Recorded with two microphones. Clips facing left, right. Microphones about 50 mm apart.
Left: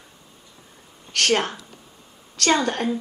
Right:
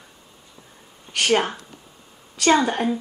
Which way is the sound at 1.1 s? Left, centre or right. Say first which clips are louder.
Right 1 dB; centre.